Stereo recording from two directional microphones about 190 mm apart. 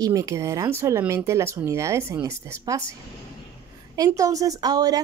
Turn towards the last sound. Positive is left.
turn(degrees=-20)  # may be behind; listen again after turning